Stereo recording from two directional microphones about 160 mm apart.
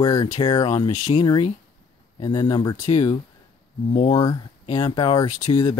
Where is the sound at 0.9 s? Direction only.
45° left (ahead or behind).